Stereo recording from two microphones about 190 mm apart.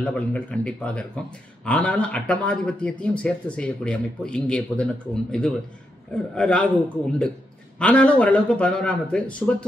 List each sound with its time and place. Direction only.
0.0 s a man's voice: 5° left (ahead or behind)